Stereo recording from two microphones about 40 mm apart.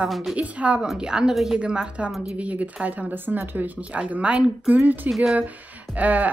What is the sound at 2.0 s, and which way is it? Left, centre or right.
A woman's voice, right.